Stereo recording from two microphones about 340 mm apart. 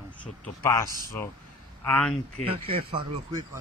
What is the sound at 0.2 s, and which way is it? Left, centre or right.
Speech, centre.